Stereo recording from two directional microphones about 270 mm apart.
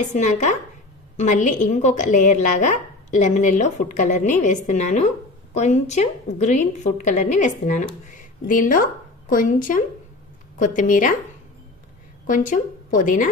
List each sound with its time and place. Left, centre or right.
0.0 s a woman's voice: left
12.3 s a woman's voice: left